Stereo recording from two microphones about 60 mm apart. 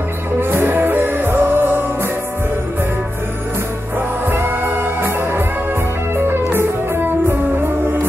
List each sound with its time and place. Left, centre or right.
0.4 s music: right
4.3 s music: right